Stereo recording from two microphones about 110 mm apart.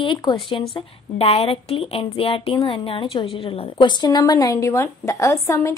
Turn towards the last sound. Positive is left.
turn(degrees=30)  # may be behind; listen again after turning